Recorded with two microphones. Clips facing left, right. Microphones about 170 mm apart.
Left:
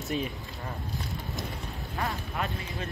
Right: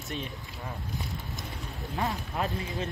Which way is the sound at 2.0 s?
20° right (ahead or behind).